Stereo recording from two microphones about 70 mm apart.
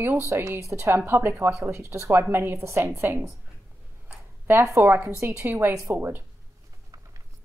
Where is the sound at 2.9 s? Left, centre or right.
Right.